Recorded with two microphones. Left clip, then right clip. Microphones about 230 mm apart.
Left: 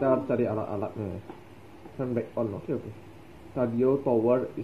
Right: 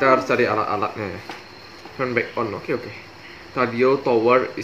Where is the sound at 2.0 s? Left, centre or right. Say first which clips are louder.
Right 8 dB; centre.